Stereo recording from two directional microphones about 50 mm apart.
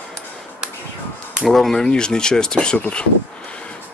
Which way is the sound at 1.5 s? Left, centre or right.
Centre.